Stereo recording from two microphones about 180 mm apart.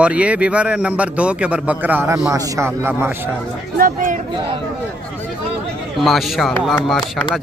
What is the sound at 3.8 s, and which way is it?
Speech, 50° right (ahead or behind).